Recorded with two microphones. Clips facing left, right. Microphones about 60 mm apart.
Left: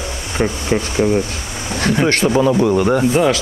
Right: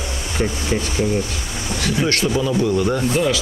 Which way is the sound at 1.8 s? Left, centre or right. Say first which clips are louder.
Left 5 dB; left.